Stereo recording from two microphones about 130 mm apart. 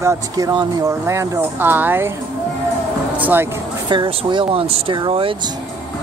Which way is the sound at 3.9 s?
40° right (ahead or behind).